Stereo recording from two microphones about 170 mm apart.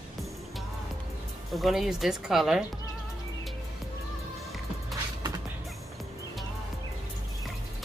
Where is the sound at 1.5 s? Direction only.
Centre (ahead or behind).